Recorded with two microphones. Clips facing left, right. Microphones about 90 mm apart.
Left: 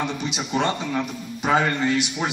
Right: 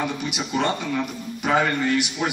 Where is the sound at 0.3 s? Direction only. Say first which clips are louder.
Left 1 dB; 25° left (ahead or behind).